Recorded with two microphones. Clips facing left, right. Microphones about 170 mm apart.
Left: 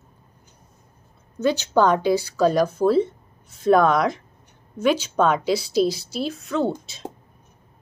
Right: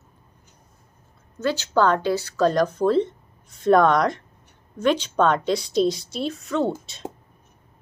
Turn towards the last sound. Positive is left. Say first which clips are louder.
# left 1 dB
turn(degrees=0)  # may be behind; listen again after turning